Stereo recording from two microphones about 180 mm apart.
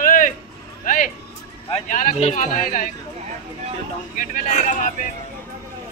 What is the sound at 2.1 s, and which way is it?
Speech, 35° left (ahead or behind).